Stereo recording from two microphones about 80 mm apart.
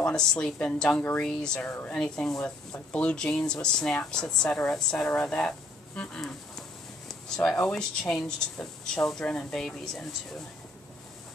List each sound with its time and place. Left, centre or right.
0.0 s speech: centre
1.6 s speech: left
2.0 s speech: centre
7.1 s a sound: centre
7.6 s speech: centre